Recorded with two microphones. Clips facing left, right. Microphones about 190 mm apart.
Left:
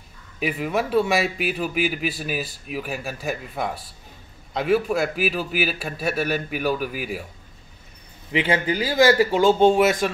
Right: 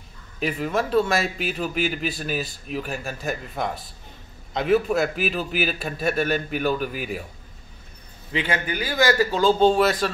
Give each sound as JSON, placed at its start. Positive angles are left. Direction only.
{"t": 0.4, "sound": "a man's voice", "side_deg": 10}
{"t": 8.3, "sound": "a man's voice", "side_deg": 25}